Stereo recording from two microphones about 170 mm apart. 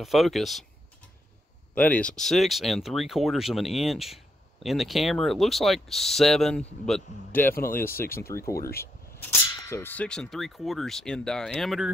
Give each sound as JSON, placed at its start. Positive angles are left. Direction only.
{"t": 0.0, "sound": "speech", "side_deg": 0}
{"t": 1.8, "sound": "speech", "side_deg": 10}
{"t": 8.5, "sound": "speech", "side_deg": 65}
{"t": 9.2, "sound": "speech", "side_deg": 10}